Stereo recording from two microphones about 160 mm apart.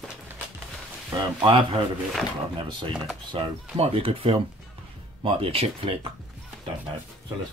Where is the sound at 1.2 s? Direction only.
30° right (ahead or behind).